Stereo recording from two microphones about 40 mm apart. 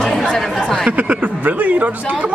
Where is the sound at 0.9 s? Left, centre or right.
Right.